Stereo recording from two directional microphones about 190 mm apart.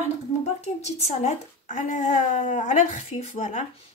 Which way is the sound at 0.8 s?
35° left (ahead or behind).